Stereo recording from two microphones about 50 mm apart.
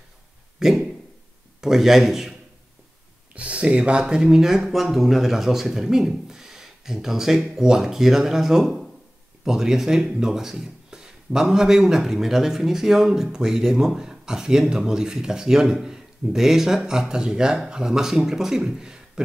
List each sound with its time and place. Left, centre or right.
0.6 s a sound: centre
1.6 s speech: centre
3.3 s speech: right